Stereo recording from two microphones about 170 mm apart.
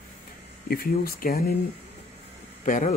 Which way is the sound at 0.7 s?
60° left (ahead or behind).